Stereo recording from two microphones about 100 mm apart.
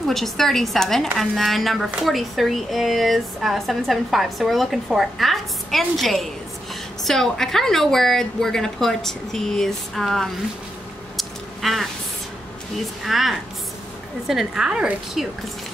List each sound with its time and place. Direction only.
0.0 s speech: centre (ahead or behind)
11.1 s a sound: centre (ahead or behind)
12.7 s speech: centre (ahead or behind)